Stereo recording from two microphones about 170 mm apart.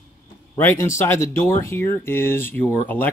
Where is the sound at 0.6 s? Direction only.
15° left (ahead or behind).